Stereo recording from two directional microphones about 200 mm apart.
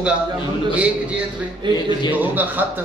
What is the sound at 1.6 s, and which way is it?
Speech, 25° right (ahead or behind).